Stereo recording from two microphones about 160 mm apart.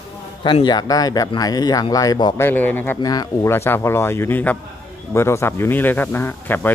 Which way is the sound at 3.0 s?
25° left (ahead or behind).